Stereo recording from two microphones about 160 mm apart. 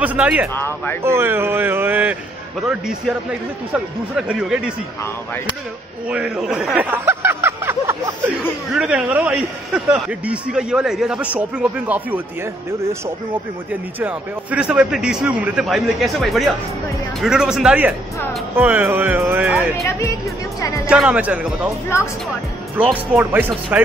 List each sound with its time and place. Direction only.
0.0 s speech: 10° right (ahead or behind)
0.6 s speech: 15° left (ahead or behind)
1.0 s speech: 15° right (ahead or behind)
3.3 s a man's voice: 5° right (ahead or behind)
6.0 s a sound: 5° right (ahead or behind)
8.7 s a man's voice: 5° right (ahead or behind)
13.9 s a man's voice: 10° right (ahead or behind)
19.9 s speech: 20° left (ahead or behind)
20.9 s speech: 10° right (ahead or behind)
23.1 s speech: 10° right (ahead or behind)